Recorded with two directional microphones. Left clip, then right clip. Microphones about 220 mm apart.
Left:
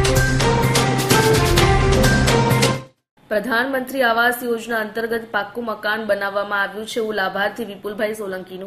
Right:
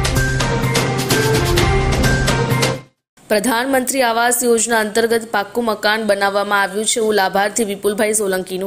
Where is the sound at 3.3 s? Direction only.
40° right (ahead or behind).